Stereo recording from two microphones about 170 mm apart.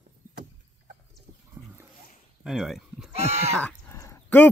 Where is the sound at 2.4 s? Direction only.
Centre (ahead or behind).